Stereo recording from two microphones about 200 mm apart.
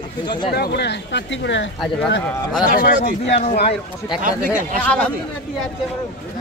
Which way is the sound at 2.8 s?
60° left (ahead or behind).